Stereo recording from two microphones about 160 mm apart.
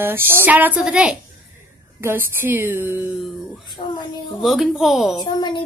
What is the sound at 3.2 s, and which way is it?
Speech, centre (ahead or behind).